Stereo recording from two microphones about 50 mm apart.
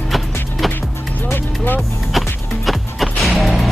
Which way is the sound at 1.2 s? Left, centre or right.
Left.